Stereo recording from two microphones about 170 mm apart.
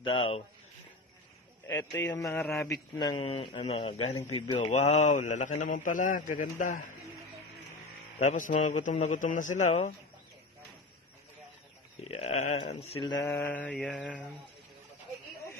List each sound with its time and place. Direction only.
0.0 s speech: 35° left (ahead or behind)
1.9 s mantra: 10° left (ahead or behind)
2.4 s a man's voice: centre (ahead or behind)
3.0 s speech: 25° left (ahead or behind); by 6.9 s 50° left (ahead or behind)
8.2 s a man's voice: 45° left (ahead or behind)
12.0 s speech: 40° left (ahead or behind)
13.2 s mantra: 10° left (ahead or behind)